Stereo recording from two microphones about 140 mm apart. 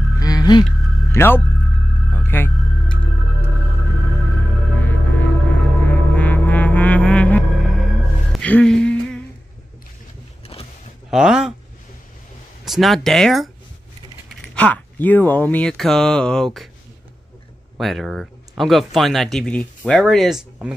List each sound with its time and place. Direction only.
0.2 s music: 30° left (ahead or behind)
1.1 s speech: 15° left (ahead or behind)
2.1 s music: 15° left (ahead or behind)
4.7 s music: 10° left (ahead or behind)
11.1 s speech: 5° right (ahead or behind)
12.6 s speech: centre (ahead or behind)
14.5 s speech: 10° left (ahead or behind)
17.7 s speech: centre (ahead or behind)